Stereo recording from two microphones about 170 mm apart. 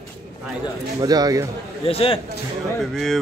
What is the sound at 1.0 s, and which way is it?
Speech, 20° right (ahead or behind).